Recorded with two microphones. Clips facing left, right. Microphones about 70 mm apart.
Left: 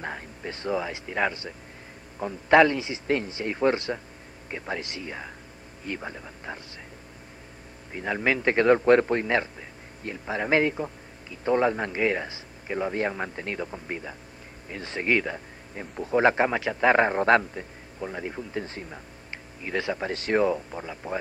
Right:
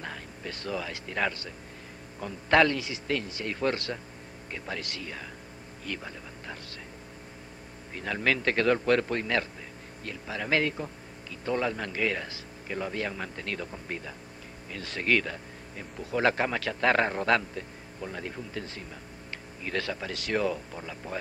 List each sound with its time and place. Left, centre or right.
0.0 s speech: left
7.9 s speech: centre
20.0 s speech: left